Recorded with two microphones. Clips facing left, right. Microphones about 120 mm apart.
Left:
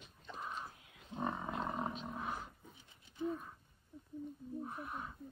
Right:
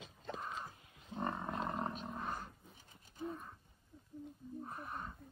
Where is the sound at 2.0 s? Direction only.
Centre (ahead or behind).